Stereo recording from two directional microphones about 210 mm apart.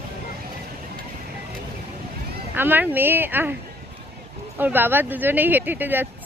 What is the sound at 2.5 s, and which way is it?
Speech, 10° right (ahead or behind).